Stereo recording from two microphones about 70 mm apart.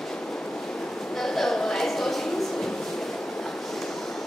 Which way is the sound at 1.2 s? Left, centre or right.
Centre.